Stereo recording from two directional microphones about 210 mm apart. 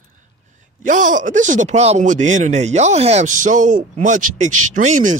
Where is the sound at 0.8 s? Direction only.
40° right (ahead or behind).